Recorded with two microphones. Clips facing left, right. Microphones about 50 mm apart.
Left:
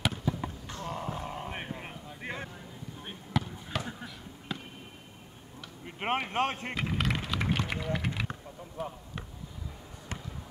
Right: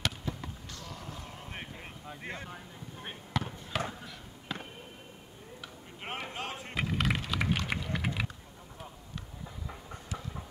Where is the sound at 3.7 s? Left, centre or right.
Centre.